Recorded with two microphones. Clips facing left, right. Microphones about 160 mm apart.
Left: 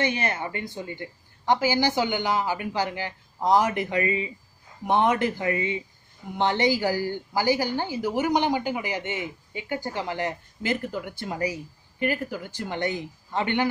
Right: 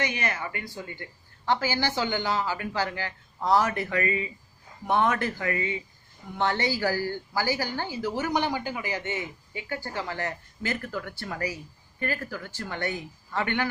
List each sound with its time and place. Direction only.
0.0 s a woman's voice: 30° left (ahead or behind)